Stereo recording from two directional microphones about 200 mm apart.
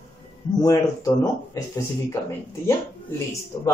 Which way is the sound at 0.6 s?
15° left (ahead or behind).